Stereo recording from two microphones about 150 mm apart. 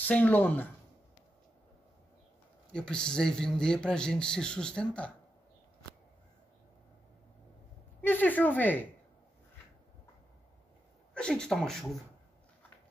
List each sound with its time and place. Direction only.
0.0 s speech: 10° left (ahead or behind)
2.7 s a man's voice: 5° left (ahead or behind)
8.0 s a woman's voice: 10° left (ahead or behind)
11.1 s a man's voice: 5° left (ahead or behind)